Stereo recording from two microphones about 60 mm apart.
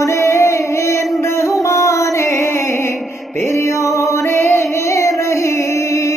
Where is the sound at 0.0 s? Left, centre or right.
Left.